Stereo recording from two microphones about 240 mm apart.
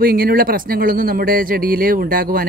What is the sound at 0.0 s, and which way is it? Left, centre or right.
Speech, right.